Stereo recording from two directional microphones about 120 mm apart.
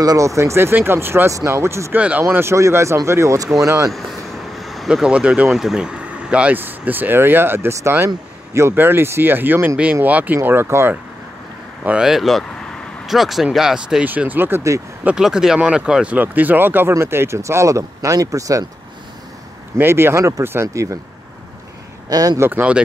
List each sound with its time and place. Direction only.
0.0 s speech: 30° right (ahead or behind)
2.0 s speech: 10° right (ahead or behind)
2.2 s speech: 20° right (ahead or behind)
4.6 s speech: centre (ahead or behind); by 11.0 s 20° right (ahead or behind)
11.8 s speech: 10° right (ahead or behind)
15.0 s speech: 5° right (ahead or behind); by 18.7 s 30° right (ahead or behind)
19.8 s speech: 20° right (ahead or behind)
22.1 s speech: 30° right (ahead or behind)
22.5 s speech: 15° right (ahead or behind)